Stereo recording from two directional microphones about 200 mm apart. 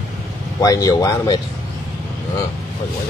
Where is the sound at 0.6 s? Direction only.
20° left (ahead or behind).